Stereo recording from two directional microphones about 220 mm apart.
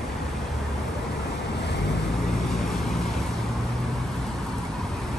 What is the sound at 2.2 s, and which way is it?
Vehicle, centre (ahead or behind).